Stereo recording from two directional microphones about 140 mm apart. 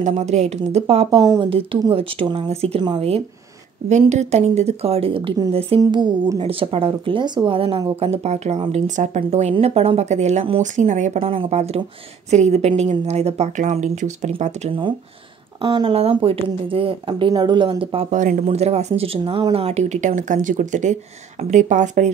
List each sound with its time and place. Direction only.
0.1 s speech: 55° right (ahead or behind)
4.0 s speech: 55° right (ahead or behind)
5.8 s speech: 30° right (ahead or behind)
6.3 s speech: 40° right (ahead or behind); by 14.7 s 55° right (ahead or behind)
15.6 s speech: 35° right (ahead or behind)
18.1 s speech: 65° right (ahead or behind)